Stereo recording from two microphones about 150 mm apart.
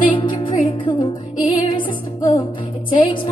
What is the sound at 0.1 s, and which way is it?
Music, 35° left (ahead or behind).